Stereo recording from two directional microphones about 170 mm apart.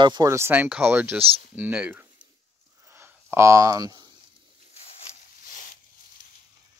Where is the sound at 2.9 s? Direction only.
15° right (ahead or behind).